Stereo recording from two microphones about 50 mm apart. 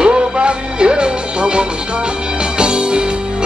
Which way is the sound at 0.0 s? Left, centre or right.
Centre.